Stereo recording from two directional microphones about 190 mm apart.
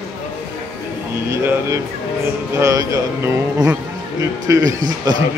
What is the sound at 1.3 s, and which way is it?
Speech, 15° right (ahead or behind).